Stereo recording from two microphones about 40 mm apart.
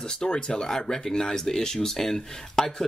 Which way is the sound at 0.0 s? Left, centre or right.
Centre.